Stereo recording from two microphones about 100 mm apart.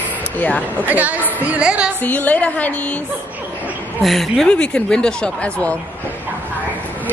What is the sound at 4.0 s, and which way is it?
Speech, centre (ahead or behind).